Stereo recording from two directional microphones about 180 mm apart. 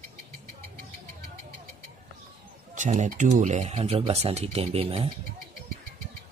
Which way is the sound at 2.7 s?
45° right (ahead or behind).